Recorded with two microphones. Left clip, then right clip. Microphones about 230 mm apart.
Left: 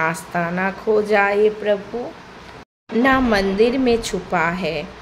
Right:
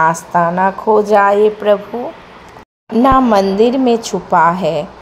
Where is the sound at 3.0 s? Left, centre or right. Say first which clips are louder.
Right 7 dB; centre.